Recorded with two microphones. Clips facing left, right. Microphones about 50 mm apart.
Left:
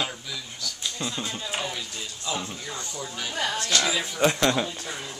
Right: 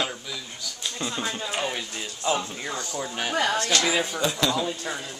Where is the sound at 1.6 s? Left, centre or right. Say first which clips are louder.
Right 3 dB; right.